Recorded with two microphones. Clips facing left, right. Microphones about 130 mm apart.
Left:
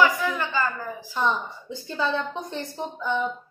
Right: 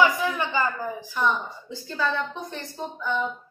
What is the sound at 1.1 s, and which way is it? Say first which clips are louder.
A woman's voice: left 1 dB; 20° left (ahead or behind).